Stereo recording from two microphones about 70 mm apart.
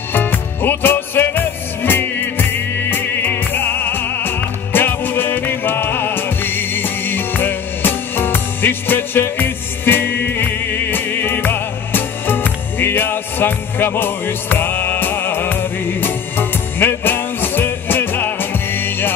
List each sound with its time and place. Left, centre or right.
0.1 s music: left